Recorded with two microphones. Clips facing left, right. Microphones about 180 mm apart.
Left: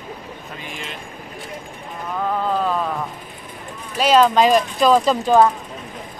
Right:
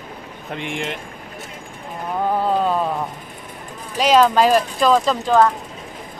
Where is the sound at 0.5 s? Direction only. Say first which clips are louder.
Right 9 dB; 75° right (ahead or behind).